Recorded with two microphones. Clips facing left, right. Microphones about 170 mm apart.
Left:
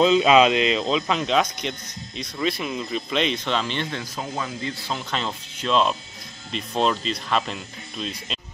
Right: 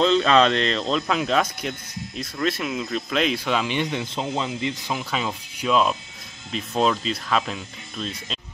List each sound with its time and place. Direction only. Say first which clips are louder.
0.0 s speech: left 2 dB; 10° left (ahead or behind)